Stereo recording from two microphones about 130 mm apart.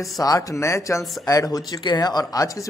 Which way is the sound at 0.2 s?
25° left (ahead or behind).